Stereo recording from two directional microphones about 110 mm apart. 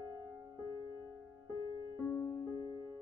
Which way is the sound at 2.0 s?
30° left (ahead or behind).